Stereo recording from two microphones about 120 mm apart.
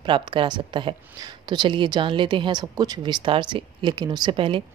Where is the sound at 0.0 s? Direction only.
45° right (ahead or behind).